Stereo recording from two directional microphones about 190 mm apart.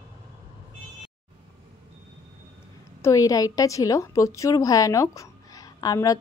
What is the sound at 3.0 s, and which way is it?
A woman's voice, 15° left (ahead or behind).